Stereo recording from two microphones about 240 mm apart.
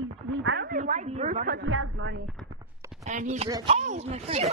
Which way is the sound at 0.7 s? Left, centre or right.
Right.